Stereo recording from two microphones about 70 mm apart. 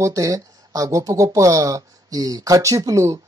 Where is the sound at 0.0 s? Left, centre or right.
Right.